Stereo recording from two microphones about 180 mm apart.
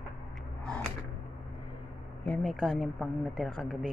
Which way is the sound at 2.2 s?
10° left (ahead or behind).